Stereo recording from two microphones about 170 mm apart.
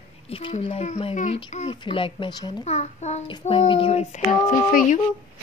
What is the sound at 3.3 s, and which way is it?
Female singing, 30° left (ahead or behind).